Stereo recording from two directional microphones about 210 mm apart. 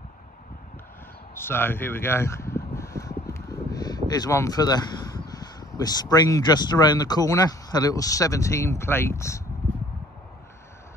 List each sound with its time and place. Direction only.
1.3 s speech: 10° left (ahead or behind)